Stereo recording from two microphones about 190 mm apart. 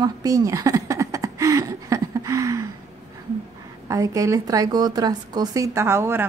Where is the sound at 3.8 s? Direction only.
15° right (ahead or behind).